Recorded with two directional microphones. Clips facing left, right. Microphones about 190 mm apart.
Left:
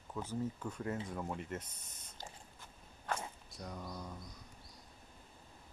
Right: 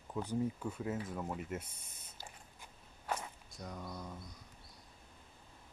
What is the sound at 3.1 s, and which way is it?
Walk, 10° right (ahead or behind).